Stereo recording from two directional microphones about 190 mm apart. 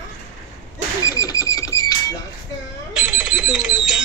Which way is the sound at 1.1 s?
20° left (ahead or behind).